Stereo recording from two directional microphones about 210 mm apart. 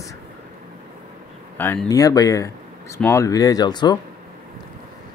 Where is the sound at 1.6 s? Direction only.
10° left (ahead or behind).